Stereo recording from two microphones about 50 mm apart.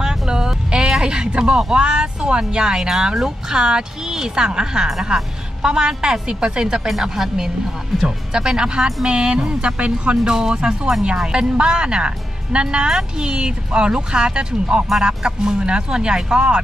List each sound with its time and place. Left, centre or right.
0.0 s speech: centre
8.3 s speech: centre